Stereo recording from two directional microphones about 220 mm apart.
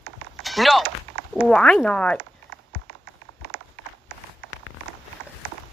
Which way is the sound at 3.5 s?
50° right (ahead or behind).